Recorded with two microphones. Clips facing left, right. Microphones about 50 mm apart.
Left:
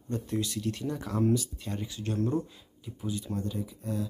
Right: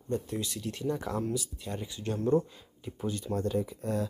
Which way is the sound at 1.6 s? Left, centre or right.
Centre.